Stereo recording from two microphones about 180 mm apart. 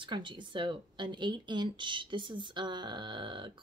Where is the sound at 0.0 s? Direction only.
25° right (ahead or behind).